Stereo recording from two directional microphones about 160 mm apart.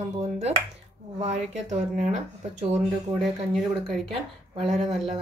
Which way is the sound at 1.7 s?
45° right (ahead or behind).